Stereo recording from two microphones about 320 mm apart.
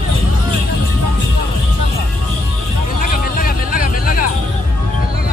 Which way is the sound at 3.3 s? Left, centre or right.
Left.